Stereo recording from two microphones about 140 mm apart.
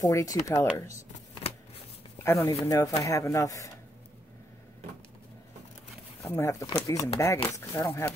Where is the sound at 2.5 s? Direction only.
20° left (ahead or behind).